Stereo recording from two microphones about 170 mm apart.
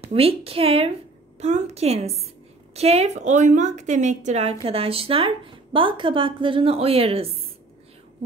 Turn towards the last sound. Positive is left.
turn(degrees=-35)  # may be behind; listen again after turning